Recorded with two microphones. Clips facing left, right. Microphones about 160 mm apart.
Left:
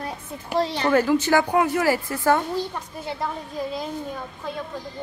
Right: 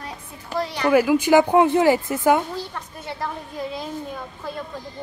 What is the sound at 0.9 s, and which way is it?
Speech, 10° right (ahead or behind).